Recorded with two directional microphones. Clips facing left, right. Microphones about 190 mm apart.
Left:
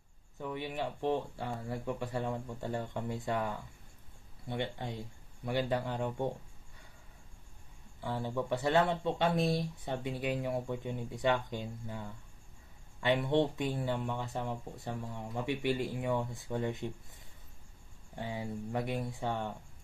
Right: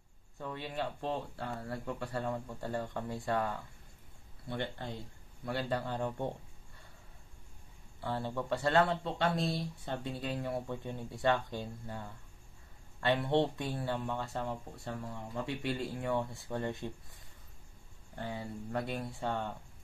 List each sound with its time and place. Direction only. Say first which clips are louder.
0.4 s speech: left 1 dB; 15° left (ahead or behind)
8.0 s speech: left 1 dB; 15° left (ahead or behind)